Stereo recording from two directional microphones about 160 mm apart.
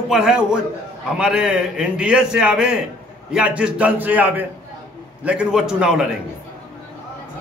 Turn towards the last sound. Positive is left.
turn(degrees=-5)  # may be behind; listen again after turning